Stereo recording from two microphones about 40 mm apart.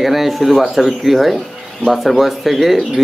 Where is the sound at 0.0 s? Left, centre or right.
Centre.